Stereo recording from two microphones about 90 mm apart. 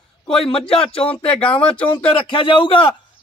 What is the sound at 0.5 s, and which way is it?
Speech, 90° left.